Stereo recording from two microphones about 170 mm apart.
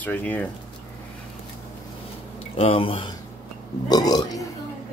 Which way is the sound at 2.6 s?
35° left (ahead or behind).